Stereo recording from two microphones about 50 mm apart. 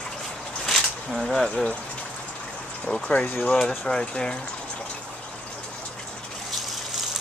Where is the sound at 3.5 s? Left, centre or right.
Centre.